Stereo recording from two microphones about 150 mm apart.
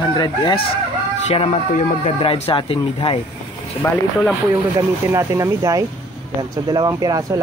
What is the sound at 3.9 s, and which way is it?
Speech, 5° left (ahead or behind).